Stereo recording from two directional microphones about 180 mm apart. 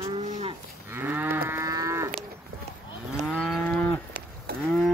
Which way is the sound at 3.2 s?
Centre (ahead or behind).